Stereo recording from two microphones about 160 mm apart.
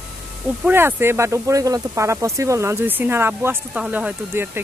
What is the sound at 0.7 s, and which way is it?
Speech, 15° right (ahead or behind).